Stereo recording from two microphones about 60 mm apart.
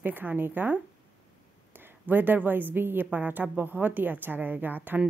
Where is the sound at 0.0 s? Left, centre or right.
Right.